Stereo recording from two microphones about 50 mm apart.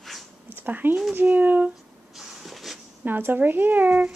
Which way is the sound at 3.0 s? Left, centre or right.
Right.